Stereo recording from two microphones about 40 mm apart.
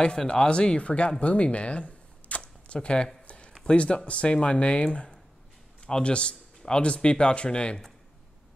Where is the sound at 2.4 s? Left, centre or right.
Left.